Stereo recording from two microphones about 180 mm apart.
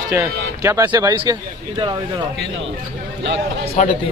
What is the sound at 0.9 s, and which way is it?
Speech, 25° right (ahead or behind).